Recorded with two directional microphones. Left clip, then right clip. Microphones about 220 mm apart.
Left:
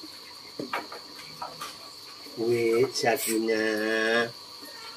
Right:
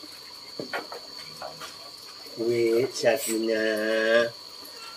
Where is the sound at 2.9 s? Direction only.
10° left (ahead or behind).